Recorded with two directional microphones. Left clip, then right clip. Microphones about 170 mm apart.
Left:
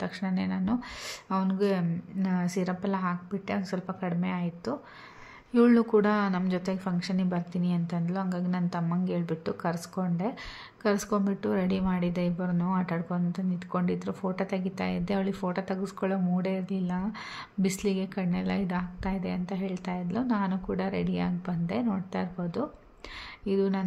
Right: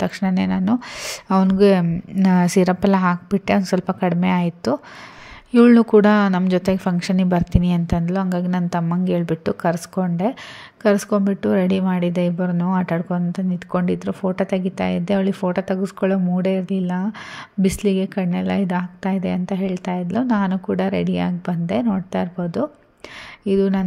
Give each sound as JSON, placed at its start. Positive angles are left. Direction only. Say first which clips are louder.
{"t": 0.0, "sound": "speech", "louder": "right 11 dB", "side_deg": -45}
{"t": 5.5, "sound": "a woman's voice", "louder": "right 10 dB", "side_deg": -35}